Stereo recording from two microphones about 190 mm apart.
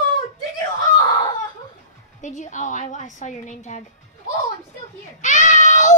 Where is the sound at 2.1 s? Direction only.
40° left (ahead or behind).